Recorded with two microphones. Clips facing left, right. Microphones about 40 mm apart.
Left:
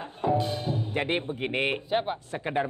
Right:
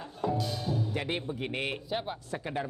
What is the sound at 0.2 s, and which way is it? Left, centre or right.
Speech, left.